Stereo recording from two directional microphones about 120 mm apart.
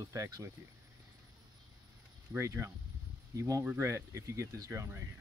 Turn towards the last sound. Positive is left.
turn(degrees=-25)  # may be behind; listen again after turning